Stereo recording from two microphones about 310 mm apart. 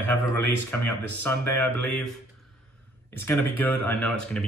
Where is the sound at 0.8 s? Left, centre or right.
Left.